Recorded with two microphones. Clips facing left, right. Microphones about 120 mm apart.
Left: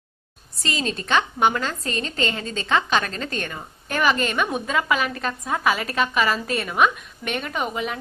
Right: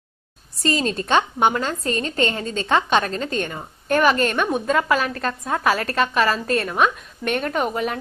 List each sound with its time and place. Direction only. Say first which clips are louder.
0.6 s a woman's voice: right 5 dB; 40° right (ahead or behind)
1.0 s a woman's voice: right 1 dB; 25° right (ahead or behind)
4.0 s a woman's voice: right 1 dB; centre (ahead or behind)
7.7 s a woman's voice: right 3 dB; 45° right (ahead or behind)